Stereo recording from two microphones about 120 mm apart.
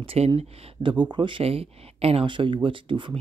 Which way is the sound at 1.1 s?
45° right (ahead or behind).